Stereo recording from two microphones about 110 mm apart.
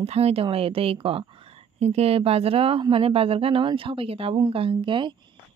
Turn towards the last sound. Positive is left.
turn(degrees=-45)  # may be behind; listen again after turning